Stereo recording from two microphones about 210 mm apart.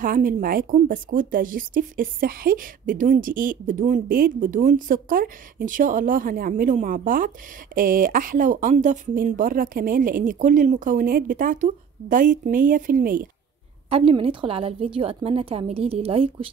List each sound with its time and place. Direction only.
0.0 s speech: 40° right (ahead or behind)
13.8 s a woman's voice: 25° right (ahead or behind)